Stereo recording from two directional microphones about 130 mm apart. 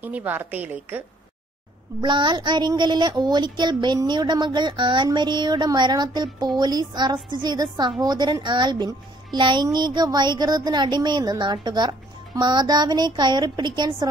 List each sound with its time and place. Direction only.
0.0 s a woman's voice: 15° right (ahead or behind)
2.0 s speech: 35° right (ahead or behind)